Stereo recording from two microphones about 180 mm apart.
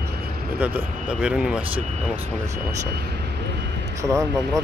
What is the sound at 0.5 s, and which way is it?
Speech, 10° right (ahead or behind).